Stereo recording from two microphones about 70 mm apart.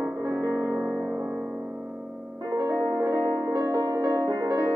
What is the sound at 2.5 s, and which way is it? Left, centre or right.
Music, right.